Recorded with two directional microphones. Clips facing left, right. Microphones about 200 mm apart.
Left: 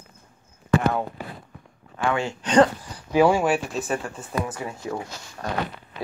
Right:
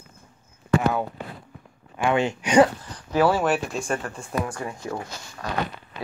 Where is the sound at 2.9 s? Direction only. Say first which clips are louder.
Left 2 dB; 15° left (ahead or behind).